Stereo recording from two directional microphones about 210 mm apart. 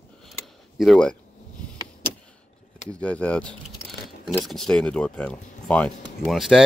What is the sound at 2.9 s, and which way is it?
Speech, 5° left (ahead or behind).